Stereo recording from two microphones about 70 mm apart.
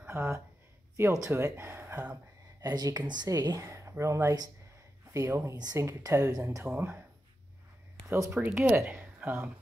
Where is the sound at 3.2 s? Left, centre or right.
Right.